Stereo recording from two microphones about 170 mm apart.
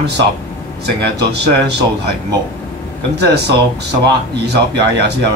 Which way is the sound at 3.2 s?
80° right.